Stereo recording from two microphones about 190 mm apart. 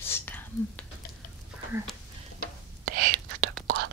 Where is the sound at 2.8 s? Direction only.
50° right (ahead or behind).